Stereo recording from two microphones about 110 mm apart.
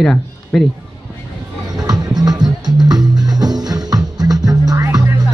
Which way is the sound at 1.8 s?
35° right (ahead or behind).